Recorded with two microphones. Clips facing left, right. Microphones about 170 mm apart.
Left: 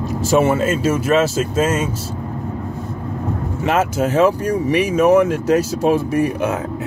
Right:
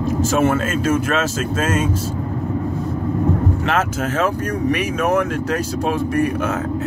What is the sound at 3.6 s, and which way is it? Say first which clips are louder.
Speech: left 3 dB; 15° left (ahead or behind).